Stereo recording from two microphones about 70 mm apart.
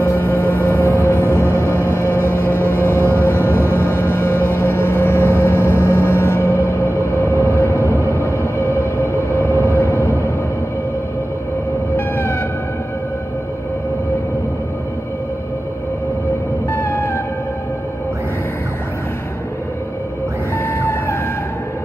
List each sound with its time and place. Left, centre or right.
0.0 s music: left
12.2 s music: left
16.7 s a sound: left
20.5 s vehicle: left